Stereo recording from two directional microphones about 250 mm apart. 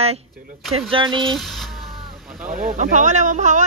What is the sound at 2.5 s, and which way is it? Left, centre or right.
Speech, right.